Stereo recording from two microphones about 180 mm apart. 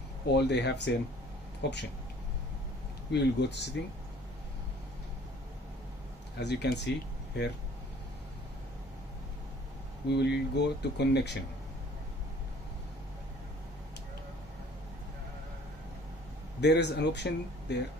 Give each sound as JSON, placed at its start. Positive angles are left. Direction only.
{"t": 0.3, "sound": "speech", "side_deg": 70}
{"t": 3.1, "sound": "speech", "side_deg": 70}
{"t": 6.3, "sound": "speech", "side_deg": 70}
{"t": 10.0, "sound": "speech", "side_deg": 70}
{"t": 16.6, "sound": "speech", "side_deg": 70}